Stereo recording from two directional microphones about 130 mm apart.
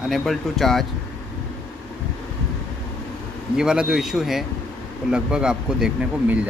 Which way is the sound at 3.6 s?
5° right (ahead or behind).